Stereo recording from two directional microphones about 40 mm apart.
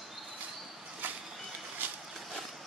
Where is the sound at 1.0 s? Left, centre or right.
Right.